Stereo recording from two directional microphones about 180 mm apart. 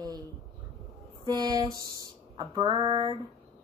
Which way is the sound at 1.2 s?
20° right (ahead or behind).